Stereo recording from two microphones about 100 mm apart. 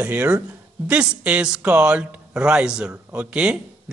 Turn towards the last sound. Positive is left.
turn(degrees=-10)  # may be behind; listen again after turning